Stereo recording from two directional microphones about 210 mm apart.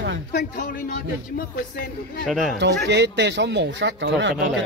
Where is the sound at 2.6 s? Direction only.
55° right (ahead or behind).